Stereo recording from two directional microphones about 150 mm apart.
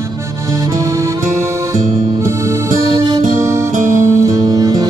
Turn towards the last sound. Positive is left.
turn(degrees=-25)  # may be behind; listen again after turning